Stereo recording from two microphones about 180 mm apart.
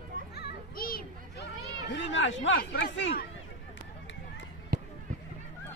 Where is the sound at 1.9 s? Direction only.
90° left.